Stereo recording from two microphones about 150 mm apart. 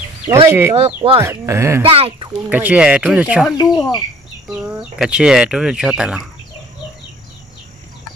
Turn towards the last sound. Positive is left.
turn(degrees=-5)  # may be behind; listen again after turning